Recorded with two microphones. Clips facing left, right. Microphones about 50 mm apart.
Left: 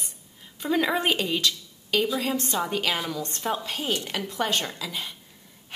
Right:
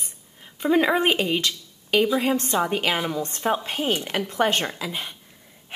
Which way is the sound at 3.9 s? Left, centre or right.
Centre.